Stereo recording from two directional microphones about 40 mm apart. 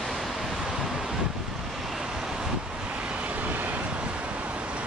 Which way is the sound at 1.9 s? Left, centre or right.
Centre.